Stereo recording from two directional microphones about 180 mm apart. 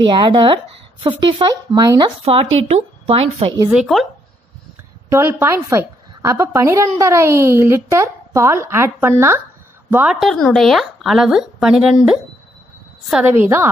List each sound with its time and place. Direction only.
0.0 s speech: 25° right (ahead or behind)
3.7 s speech: centre (ahead or behind)
5.1 s a woman's voice: 15° right (ahead or behind)
10.2 s a woman's voice: centre (ahead or behind)